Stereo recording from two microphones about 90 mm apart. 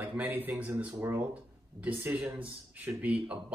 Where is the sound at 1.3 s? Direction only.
15° right (ahead or behind).